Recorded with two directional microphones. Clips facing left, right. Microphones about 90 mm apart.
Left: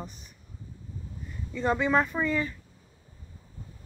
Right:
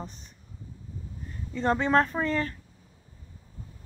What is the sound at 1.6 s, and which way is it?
Speech, 5° left (ahead or behind).